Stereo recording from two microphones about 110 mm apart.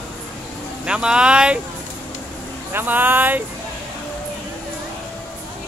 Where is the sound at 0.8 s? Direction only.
10° right (ahead or behind).